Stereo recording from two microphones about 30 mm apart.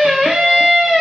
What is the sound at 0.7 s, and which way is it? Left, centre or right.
Music, centre.